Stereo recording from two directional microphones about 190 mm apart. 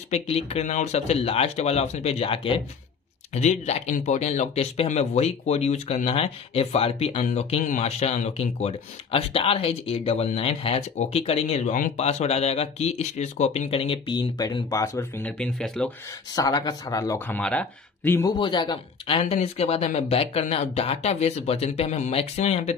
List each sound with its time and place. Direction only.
0.1 s speech: 30° left (ahead or behind); by 15.9 s 5° left (ahead or behind)
16.3 s speech: 20° left (ahead or behind)
17.4 s speech: 5° left (ahead or behind); by 22.8 s 35° left (ahead or behind)